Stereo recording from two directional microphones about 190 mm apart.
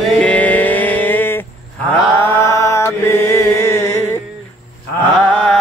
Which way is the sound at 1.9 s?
10° left (ahead or behind).